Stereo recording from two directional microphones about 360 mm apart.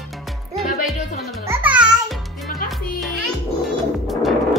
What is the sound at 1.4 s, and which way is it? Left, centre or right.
Music, centre.